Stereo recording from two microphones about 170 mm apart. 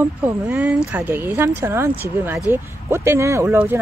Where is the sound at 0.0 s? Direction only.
10° right (ahead or behind).